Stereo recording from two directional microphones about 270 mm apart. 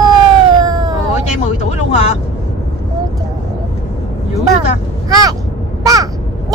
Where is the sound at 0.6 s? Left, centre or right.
Centre.